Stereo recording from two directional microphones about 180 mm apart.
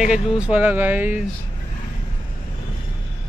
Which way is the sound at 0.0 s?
5° right (ahead or behind).